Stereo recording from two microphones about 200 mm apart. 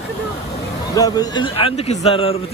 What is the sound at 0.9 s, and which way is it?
A man's voice, 20° left (ahead or behind).